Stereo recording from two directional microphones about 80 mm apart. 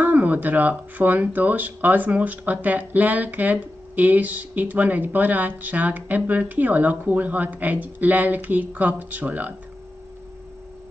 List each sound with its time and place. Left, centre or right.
0.0 s speech: centre